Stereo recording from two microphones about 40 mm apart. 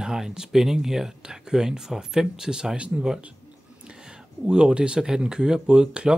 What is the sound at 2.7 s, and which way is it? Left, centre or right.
Speech, right.